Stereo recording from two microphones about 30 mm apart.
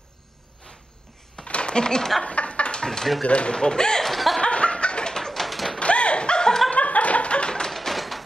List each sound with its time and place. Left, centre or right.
1.4 s a sound: left
2.2 s a sound: left
2.8 s speech: left
3.3 s speech: left
3.5 s speech: left
4.0 s laughter: centre
4.4 s chuckle: left
5.1 s a sound: centre
5.5 s bird: centre
5.8 s bird: left
6.7 s laughter: left
7.7 s a sound: centre